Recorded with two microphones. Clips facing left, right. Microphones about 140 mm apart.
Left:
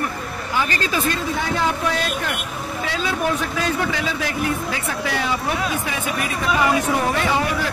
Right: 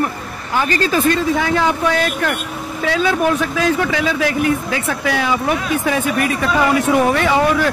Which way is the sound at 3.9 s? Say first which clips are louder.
Right 6 dB; 90° right.